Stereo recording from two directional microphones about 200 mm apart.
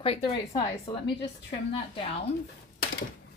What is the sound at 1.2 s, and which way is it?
A woman's voice, 30° left (ahead or behind).